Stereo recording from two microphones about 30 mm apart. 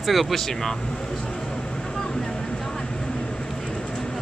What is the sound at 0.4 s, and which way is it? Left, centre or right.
Speech, centre.